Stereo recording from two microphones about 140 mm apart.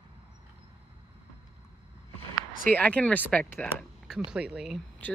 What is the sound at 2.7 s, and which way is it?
Speech, 10° left (ahead or behind).